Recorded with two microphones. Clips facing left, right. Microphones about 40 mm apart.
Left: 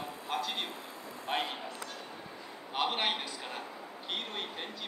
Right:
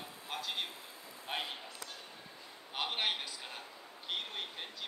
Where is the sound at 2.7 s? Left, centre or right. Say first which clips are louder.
Left 4 dB; centre.